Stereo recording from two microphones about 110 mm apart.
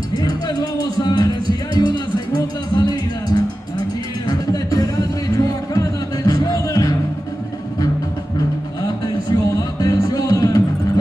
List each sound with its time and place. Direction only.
0.2 s music: 35° left (ahead or behind)
8.8 s music: 30° left (ahead or behind)